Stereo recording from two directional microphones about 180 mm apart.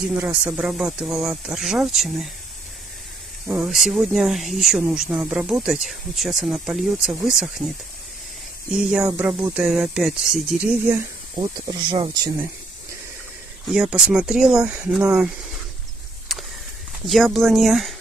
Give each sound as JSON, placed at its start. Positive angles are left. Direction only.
{"t": 0.2, "sound": "speech", "side_deg": -10}
{"t": 3.4, "sound": "speech", "side_deg": -10}
{"t": 8.9, "sound": "speech", "side_deg": -5}
{"t": 11.3, "sound": "speech", "side_deg": -25}
{"t": 13.7, "sound": "speech", "side_deg": -5}
{"t": 16.3, "sound": "vehicle", "side_deg": 0}
{"t": 17.1, "sound": "speech", "side_deg": 0}